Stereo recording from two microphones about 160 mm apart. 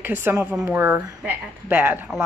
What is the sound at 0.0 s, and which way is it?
A woman's voice, 15° right (ahead or behind).